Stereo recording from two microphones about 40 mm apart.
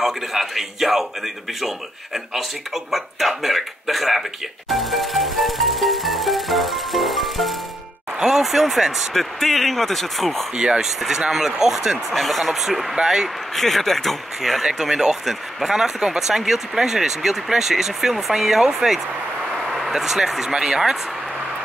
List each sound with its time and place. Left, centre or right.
0.0 s a man's voice: centre
9.1 s a man's voice: centre
10.5 s speech: right
10.8 s speech: centre
12.1 s a man's voice: centre
12.9 s speech: centre
13.6 s a man's voice: centre
14.8 s speech: centre